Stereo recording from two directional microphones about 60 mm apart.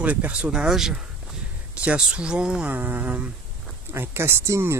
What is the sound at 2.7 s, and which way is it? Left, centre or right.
Speech, right.